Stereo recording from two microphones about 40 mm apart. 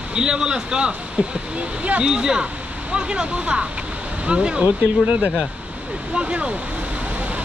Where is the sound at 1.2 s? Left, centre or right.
Right.